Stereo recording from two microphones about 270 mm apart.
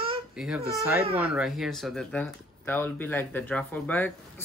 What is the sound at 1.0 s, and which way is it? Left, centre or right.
Speech, right.